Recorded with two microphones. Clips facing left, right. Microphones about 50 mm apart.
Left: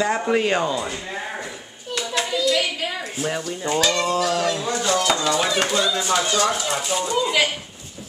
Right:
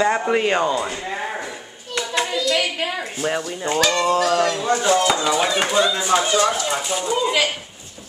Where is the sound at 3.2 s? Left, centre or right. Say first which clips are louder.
Right 3 dB; centre.